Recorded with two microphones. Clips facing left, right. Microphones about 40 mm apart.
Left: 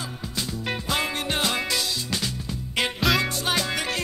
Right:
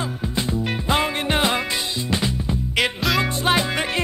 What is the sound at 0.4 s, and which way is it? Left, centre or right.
Music, right.